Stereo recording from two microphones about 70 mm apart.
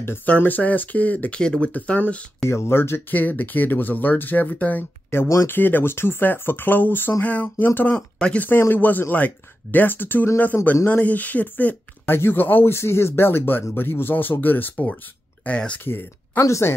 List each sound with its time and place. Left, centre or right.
0.0 s speech: left; by 2.2 s centre
2.4 s speech: left
5.1 s speech: left
8.2 s speech: centre
8.5 s speech: left
15.8 s speech: left